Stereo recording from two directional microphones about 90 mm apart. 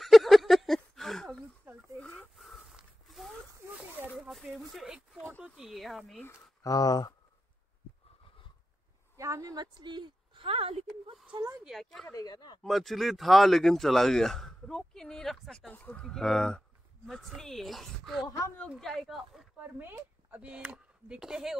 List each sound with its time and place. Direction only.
0.0 s a sound: centre (ahead or behind)
2.3 s a sound: centre (ahead or behind)
5.4 s speech: 5° right (ahead or behind)
6.6 s speech: 45° left (ahead or behind)
9.1 s a sound: 35° right (ahead or behind); by 10.7 s 90° right
11.6 s speech: centre (ahead or behind)
12.1 s speech: 45° left (ahead or behind)
12.6 s speech: centre (ahead or behind)
15.7 s speech: 15° left (ahead or behind); by 19.4 s centre (ahead or behind)
19.8 s speech: 25° right (ahead or behind)
20.4 s speech: 10° right (ahead or behind)